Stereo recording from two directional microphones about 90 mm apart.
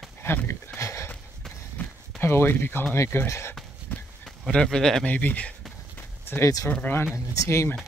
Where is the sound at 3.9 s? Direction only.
20° left (ahead or behind).